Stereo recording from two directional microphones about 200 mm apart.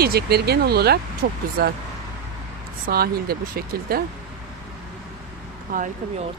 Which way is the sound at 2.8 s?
50° right (ahead or behind).